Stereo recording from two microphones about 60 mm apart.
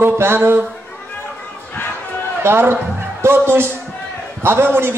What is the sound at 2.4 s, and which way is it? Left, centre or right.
A man's voice, right.